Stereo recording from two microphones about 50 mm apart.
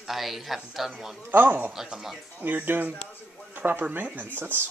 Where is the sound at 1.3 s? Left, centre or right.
Right.